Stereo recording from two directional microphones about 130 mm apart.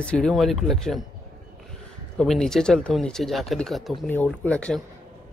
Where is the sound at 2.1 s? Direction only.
Centre (ahead or behind).